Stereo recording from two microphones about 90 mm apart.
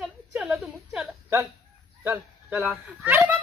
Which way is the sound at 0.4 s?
5° right (ahead or behind).